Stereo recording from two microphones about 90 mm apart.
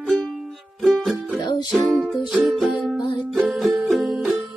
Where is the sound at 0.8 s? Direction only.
Centre (ahead or behind).